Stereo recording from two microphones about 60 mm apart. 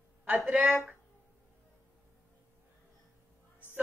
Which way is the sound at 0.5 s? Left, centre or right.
Right.